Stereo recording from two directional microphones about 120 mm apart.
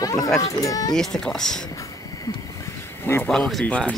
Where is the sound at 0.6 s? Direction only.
30° left (ahead or behind).